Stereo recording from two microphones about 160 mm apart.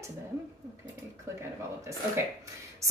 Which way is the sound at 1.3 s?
15° right (ahead or behind).